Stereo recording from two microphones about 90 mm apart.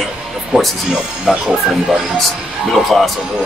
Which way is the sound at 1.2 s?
5° right (ahead or behind).